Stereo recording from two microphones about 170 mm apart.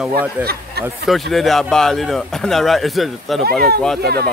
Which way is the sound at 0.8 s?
70° right (ahead or behind).